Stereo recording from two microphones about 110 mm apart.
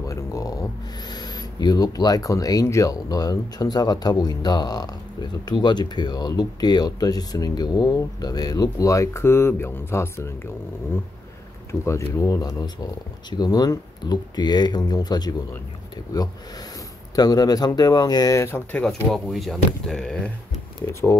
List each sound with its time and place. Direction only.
0.0 s speech: 30° left (ahead or behind)
11.7 s speech: 20° left (ahead or behind)
12.2 s speech: 30° left (ahead or behind)
17.1 s speech: 35° left (ahead or behind)
18.8 s speech: 5° left (ahead or behind)
20.9 s speech: 25° left (ahead or behind)